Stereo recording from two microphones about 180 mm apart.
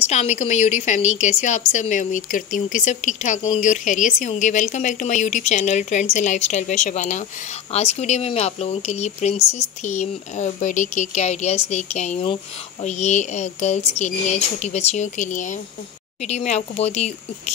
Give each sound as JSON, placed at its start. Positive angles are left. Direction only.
{"t": 0.0, "sound": "a woman's voice", "side_deg": 35}